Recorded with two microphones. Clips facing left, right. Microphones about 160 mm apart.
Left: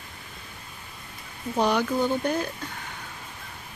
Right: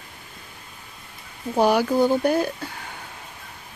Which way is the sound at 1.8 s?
35° right (ahead or behind).